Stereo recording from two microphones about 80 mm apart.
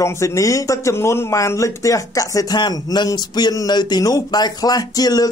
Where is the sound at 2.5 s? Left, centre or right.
Left.